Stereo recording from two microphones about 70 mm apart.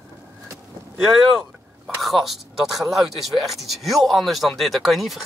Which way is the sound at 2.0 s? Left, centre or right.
Centre.